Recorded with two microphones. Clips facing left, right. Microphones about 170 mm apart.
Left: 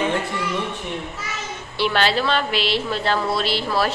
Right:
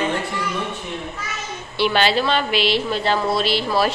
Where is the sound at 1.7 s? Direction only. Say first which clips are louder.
Right 2 dB; centre (ahead or behind).